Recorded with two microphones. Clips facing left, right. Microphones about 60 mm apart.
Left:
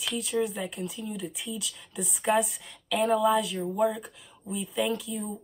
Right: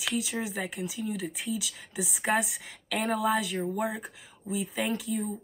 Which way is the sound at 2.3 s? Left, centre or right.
Right.